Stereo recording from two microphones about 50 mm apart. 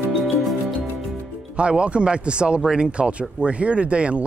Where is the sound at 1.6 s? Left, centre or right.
Right.